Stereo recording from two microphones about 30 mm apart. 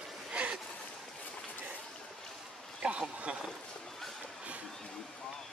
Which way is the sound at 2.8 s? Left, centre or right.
Right.